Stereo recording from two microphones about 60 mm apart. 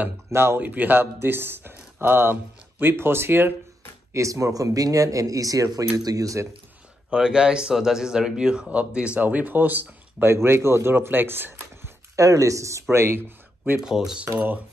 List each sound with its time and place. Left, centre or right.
0.3 s speech: right
0.6 s speech: right
4.1 s speech: right
7.1 s speech: centre; by 9.9 s right
10.2 s speech: right
12.2 s speech: right
12.9 s speech: right
13.7 s speech: centre